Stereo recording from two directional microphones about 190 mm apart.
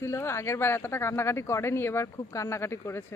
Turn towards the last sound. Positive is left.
turn(degrees=15)  # may be behind; listen again after turning